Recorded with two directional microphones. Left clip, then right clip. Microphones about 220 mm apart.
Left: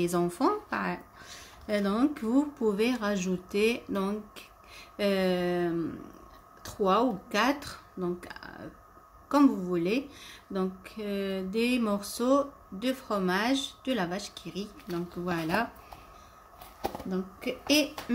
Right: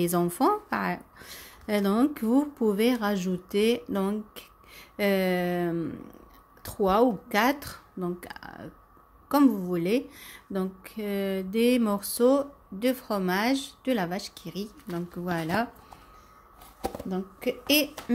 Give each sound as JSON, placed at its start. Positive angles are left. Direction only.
{"t": 0.0, "sound": "speech", "side_deg": -30}
{"t": 16.8, "sound": "speech", "side_deg": -30}